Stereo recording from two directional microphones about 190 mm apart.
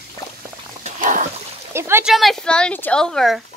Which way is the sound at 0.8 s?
40° right (ahead or behind).